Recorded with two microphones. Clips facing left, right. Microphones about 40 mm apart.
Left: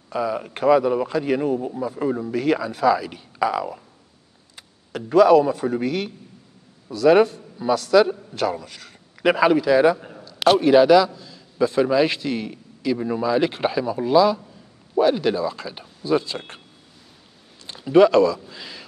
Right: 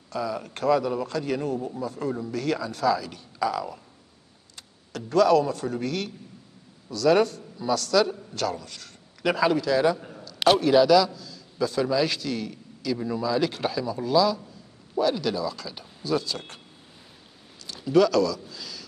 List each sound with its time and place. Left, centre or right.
0.1 s a man's voice: left
4.9 s a man's voice: centre
10.6 s a man's voice: left
17.7 s a man's voice: left
18.5 s a sound: left